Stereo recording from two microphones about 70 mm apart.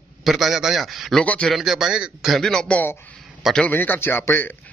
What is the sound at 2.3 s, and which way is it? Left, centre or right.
Speech, centre.